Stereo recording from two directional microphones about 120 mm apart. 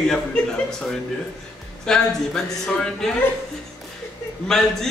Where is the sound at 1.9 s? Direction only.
5° left (ahead or behind).